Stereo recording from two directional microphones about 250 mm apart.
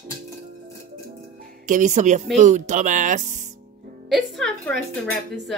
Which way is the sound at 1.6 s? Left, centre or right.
Right.